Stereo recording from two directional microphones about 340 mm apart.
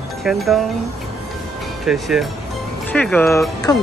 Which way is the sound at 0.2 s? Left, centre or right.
Centre.